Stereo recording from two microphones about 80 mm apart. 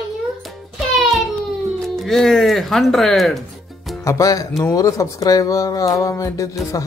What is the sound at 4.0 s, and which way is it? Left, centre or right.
Speech, left.